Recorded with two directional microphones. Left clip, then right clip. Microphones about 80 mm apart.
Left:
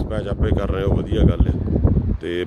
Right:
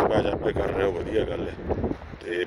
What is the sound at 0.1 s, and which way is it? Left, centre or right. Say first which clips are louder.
Speech: right 1 dB; left.